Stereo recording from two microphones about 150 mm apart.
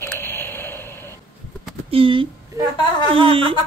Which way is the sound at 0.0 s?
15° left (ahead or behind).